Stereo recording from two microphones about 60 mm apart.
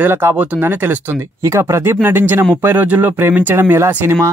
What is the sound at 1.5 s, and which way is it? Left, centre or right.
Speech, right.